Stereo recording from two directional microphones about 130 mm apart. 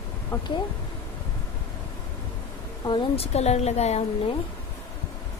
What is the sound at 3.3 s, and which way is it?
Speech, 55° left (ahead or behind).